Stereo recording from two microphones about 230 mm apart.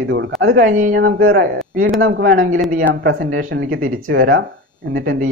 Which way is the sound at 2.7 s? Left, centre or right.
Right.